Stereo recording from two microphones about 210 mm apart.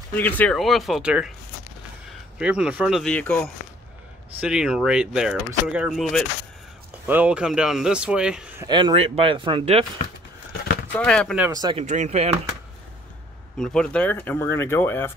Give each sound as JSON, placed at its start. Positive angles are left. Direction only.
{"t": 0.1, "sound": "a man's voice", "side_deg": 10}
{"t": 2.3, "sound": "a man's voice", "side_deg": -5}
{"t": 8.6, "sound": "speech", "side_deg": -20}
{"t": 10.9, "sound": "a man's voice", "side_deg": 5}
{"t": 11.4, "sound": "speech", "side_deg": -20}
{"t": 11.8, "sound": "speech", "side_deg": -35}
{"t": 13.6, "sound": "speech", "side_deg": 5}